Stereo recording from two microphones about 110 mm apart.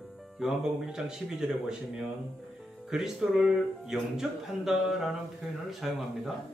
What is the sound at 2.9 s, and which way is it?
Speech, 5° right (ahead or behind).